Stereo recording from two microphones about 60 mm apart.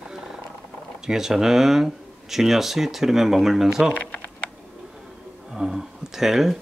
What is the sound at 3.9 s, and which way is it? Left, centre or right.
Speech, left.